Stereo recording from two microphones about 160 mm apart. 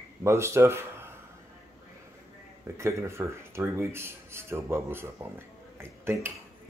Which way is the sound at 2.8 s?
15° right (ahead or behind).